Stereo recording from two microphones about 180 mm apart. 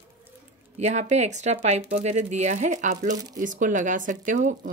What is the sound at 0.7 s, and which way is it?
Speech, 40° right (ahead or behind).